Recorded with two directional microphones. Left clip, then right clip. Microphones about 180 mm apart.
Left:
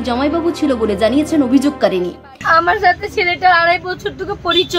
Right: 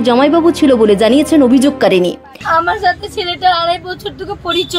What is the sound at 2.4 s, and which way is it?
A woman's voice, 15° left (ahead or behind).